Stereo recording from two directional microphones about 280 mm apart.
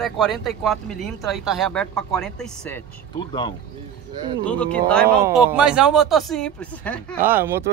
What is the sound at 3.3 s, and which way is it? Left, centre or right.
Speech, centre.